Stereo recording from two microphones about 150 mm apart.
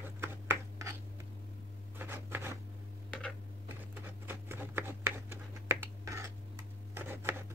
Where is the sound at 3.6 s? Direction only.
15° right (ahead or behind).